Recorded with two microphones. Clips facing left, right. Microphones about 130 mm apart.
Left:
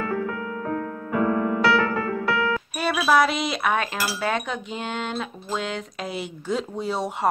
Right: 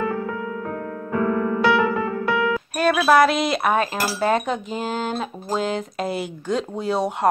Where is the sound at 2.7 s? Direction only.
5° left (ahead or behind).